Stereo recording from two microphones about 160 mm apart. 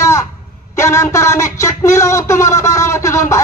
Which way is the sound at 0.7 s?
20° left (ahead or behind).